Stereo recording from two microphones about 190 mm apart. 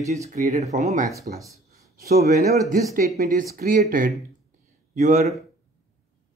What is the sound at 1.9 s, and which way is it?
Speech, 50° right (ahead or behind).